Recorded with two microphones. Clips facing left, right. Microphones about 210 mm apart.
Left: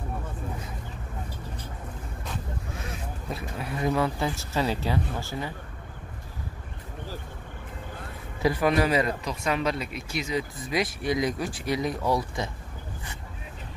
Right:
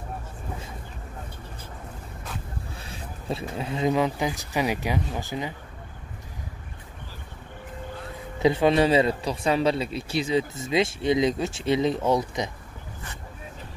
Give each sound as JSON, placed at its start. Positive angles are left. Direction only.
{"t": 2.8, "sound": "speech", "side_deg": -30}
{"t": 8.4, "sound": "speech", "side_deg": -25}